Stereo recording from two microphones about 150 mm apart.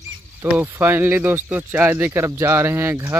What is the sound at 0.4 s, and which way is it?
Speech, 15° right (ahead or behind).